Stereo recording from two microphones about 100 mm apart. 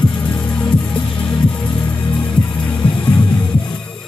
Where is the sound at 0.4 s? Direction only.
10° left (ahead or behind).